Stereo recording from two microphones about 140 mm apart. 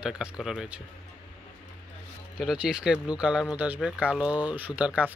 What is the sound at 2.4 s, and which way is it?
Speech, 5° right (ahead or behind).